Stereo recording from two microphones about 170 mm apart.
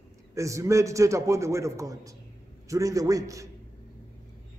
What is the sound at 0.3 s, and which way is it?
A man's voice, 20° right (ahead or behind).